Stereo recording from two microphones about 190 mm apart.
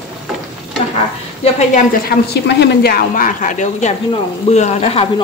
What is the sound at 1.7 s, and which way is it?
A woman's voice, 50° left (ahead or behind).